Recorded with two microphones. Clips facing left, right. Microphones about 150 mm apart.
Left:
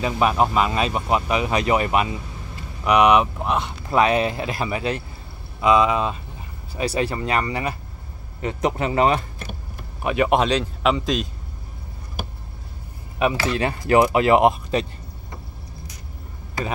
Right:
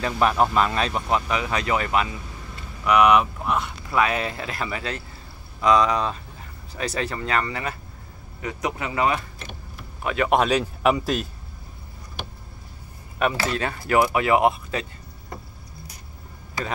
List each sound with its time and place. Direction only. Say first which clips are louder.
0.0 s speech: left 1 dB; 10° left (ahead or behind)
5.6 s speech: left 2 dB; 5° left (ahead or behind)
8.4 s speech: left 5 dB; 30° left (ahead or behind)
10.0 s speech: left 4 dB; 15° left (ahead or behind)
10.3 s speech: left 1 dB; 5° right (ahead or behind)
13.5 s speech: left 4 dB; 20° left (ahead or behind)